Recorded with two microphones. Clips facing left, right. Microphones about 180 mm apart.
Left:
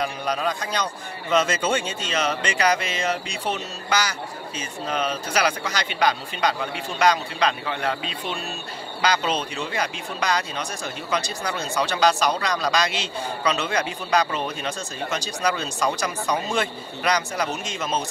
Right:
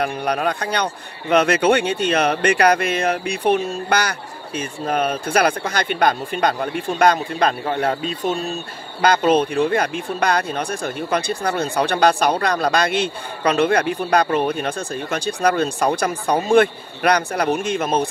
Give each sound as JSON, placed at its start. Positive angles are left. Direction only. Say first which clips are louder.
{"t": 0.0, "sound": "speech", "louder": "right 4 dB", "side_deg": -60}
{"t": 9.0, "sound": "speech", "louder": "right 8 dB", "side_deg": -55}